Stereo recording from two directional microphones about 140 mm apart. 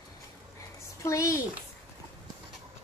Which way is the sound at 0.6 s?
20° left (ahead or behind).